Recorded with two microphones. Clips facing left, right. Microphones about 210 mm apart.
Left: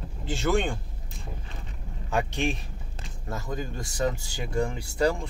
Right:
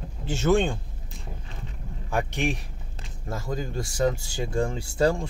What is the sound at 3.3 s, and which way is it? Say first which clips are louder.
Speech: right 2 dB; 25° right (ahead or behind).